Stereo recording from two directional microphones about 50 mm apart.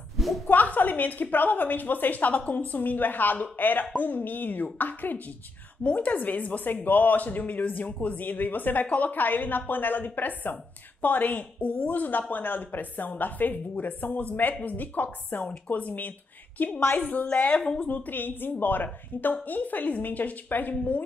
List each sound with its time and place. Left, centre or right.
0.5 s a woman's voice: left